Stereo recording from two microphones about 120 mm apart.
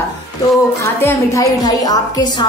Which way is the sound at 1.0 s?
20° left (ahead or behind).